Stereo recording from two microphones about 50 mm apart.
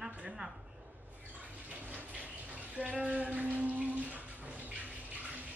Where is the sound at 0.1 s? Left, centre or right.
Right.